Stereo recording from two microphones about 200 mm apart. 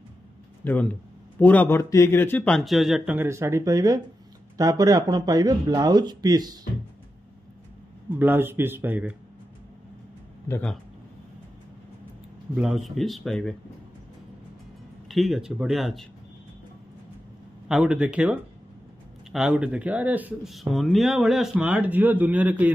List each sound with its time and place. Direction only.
0.6 s speech: 10° left (ahead or behind); by 6.6 s 20° right (ahead or behind)
8.1 s speech: 10° right (ahead or behind)
10.5 s speech: 5° left (ahead or behind)
12.5 s speech: centre (ahead or behind)
15.0 s speech: centre (ahead or behind)
17.6 s speech: 5° right (ahead or behind)